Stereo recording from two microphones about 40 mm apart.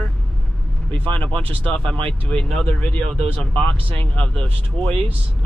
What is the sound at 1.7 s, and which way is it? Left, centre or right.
Speech, left.